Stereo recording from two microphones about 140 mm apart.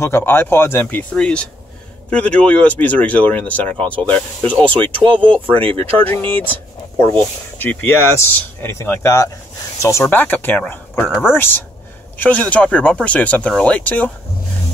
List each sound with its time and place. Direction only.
0.0 s speech: 15° left (ahead or behind)
5.0 s speech: 35° right (ahead or behind)
5.8 s speech: 15° left (ahead or behind)
7.5 s speech: 15° left (ahead or behind)
12.2 s speech: 10° left (ahead or behind)